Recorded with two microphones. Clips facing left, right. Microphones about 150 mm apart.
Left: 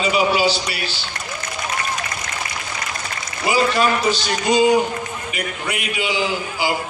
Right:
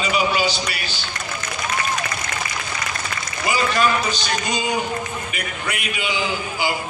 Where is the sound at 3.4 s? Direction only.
30° left (ahead or behind).